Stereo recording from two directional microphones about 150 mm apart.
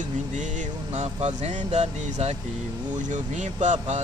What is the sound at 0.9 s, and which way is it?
Speech, 50° right (ahead or behind).